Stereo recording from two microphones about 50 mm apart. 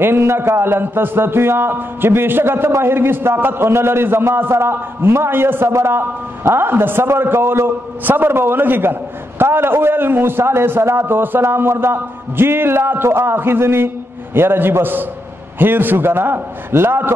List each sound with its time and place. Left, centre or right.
0.0 s a man's voice: right
5.7 s a man's voice: right